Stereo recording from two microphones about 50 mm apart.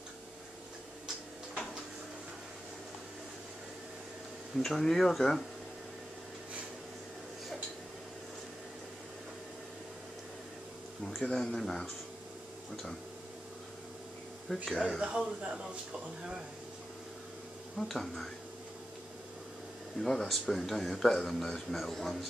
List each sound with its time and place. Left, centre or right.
4.6 s speech: centre
11.1 s speech: centre
14.5 s a man's voice: centre
14.8 s speech: right
17.7 s a man's voice: centre
20.0 s a man's voice: centre